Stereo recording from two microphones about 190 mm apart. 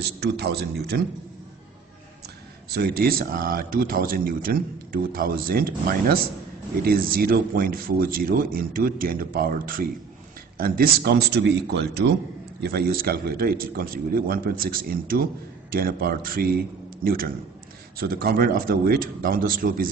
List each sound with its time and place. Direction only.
0.0 s speech: 60° right (ahead or behind)
2.7 s speech: 55° right (ahead or behind)